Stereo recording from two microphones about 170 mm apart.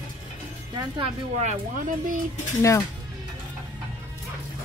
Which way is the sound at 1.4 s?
50° right (ahead or behind).